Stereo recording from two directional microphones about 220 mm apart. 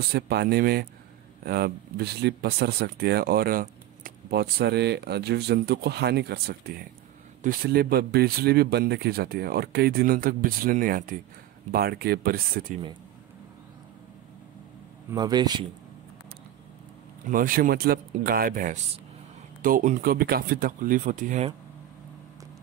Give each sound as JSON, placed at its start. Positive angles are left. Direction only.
{"t": 0.1, "sound": "speech", "side_deg": -45}
{"t": 15.0, "sound": "speech", "side_deg": -20}
{"t": 17.3, "sound": "speech", "side_deg": -40}